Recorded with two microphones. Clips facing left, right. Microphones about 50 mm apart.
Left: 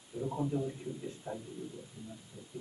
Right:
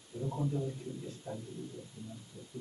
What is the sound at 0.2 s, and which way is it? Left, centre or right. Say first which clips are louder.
A man's voice: left 2 dB; centre.